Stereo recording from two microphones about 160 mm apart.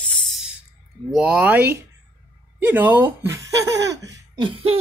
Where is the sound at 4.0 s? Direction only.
25° right (ahead or behind).